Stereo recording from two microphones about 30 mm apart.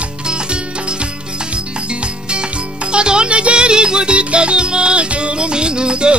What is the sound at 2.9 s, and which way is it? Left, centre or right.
Music, right.